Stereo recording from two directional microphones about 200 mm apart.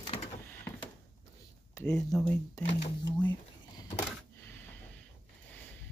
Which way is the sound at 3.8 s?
10° left (ahead or behind).